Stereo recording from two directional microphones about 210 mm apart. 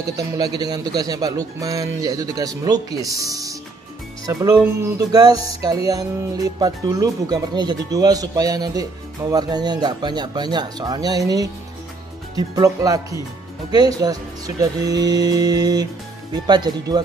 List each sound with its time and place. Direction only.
0.2 s speech: 20° right (ahead or behind)